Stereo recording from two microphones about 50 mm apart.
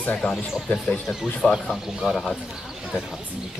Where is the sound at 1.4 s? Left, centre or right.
Centre.